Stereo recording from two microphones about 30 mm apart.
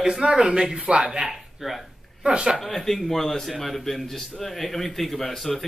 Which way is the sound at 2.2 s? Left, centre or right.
Right.